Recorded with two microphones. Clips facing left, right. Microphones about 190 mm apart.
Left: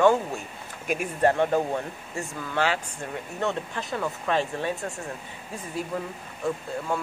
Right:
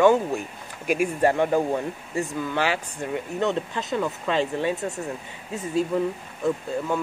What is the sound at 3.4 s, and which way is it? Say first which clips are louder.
Speech: right 2 dB; 20° right (ahead or behind).